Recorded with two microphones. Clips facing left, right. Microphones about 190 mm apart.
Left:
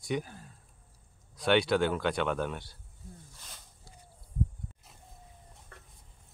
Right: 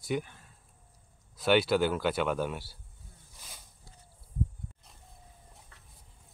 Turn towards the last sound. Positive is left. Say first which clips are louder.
# left 7 dB
turn(degrees=50)  # may be behind; listen again after turning